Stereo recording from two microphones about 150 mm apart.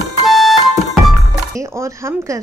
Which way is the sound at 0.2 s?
Centre (ahead or behind).